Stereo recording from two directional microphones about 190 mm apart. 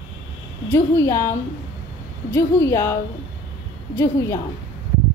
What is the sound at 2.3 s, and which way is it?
A woman's voice, 15° left (ahead or behind).